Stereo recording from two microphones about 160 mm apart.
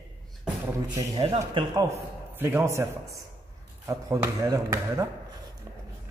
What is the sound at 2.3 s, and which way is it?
Speech, 15° right (ahead or behind).